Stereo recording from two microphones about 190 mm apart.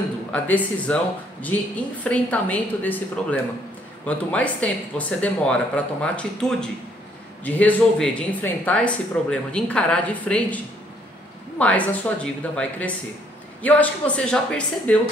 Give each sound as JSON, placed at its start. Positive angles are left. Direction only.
{"t": 0.3, "sound": "speech", "side_deg": 5}